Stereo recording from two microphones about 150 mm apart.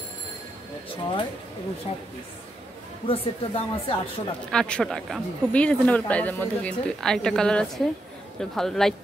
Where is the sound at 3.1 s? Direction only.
40° left (ahead or behind).